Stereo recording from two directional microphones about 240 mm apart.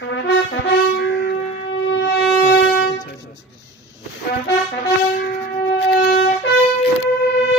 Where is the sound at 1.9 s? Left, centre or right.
Left.